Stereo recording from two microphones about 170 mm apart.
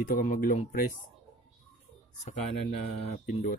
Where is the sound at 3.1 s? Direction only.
40° left (ahead or behind).